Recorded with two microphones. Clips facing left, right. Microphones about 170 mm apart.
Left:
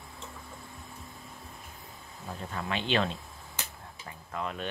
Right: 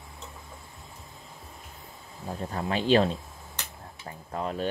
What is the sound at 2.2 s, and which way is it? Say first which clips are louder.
Speech: right 5 dB; 35° right (ahead or behind).